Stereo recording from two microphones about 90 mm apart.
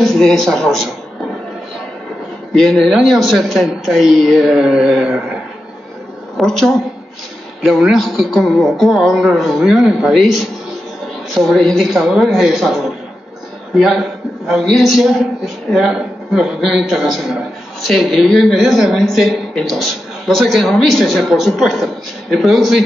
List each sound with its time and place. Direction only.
0.1 s a man's voice: 5° left (ahead or behind)
2.5 s a man's voice: 5° left (ahead or behind)
6.3 s a man's voice: 5° left (ahead or behind)
11.4 s a man's voice: 5° left (ahead or behind)